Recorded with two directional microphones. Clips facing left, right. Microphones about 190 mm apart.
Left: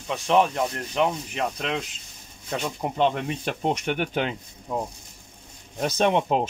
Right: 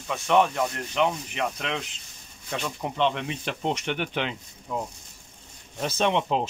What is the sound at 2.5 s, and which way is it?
Speech, 45° left (ahead or behind).